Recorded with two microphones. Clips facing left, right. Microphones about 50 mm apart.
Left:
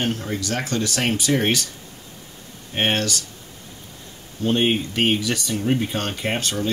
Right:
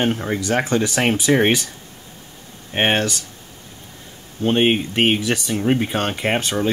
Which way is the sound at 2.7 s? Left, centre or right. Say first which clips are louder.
Right 3 dB; right.